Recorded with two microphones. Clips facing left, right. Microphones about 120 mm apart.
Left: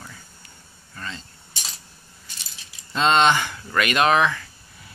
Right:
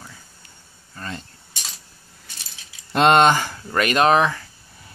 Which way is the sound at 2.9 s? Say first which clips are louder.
Right 4 dB; 55° right (ahead or behind).